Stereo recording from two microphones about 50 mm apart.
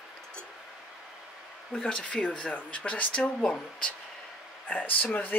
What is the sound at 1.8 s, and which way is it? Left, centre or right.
Speech, left.